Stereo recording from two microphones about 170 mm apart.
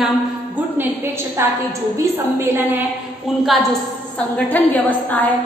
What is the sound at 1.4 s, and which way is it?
A woman's voice, 15° right (ahead or behind).